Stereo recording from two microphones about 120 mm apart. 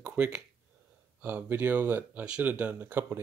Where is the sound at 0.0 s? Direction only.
10° right (ahead or behind).